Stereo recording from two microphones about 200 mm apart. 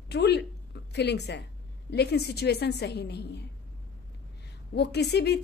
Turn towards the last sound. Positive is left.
turn(degrees=55)  # may be behind; listen again after turning